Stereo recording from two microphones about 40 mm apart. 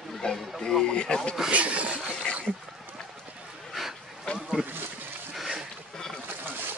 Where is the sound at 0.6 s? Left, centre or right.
Centre.